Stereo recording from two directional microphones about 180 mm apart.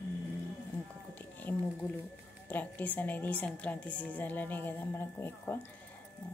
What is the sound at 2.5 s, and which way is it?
A woman's voice, 10° left (ahead or behind).